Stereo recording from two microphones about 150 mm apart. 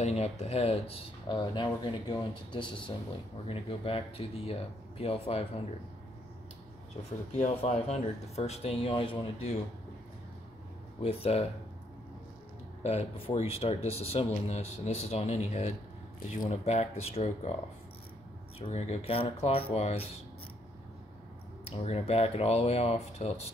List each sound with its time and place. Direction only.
0.0 s speech: 45° left (ahead or behind)
7.3 s speech: 50° left (ahead or behind)
11.0 s speech: 40° left (ahead or behind)
12.8 s speech: 40° left (ahead or behind)
18.6 s speech: 45° left (ahead or behind)
21.6 s speech: 45° left (ahead or behind)